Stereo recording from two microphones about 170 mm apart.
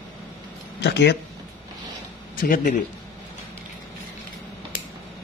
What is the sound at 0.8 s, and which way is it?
Speech, 85° left.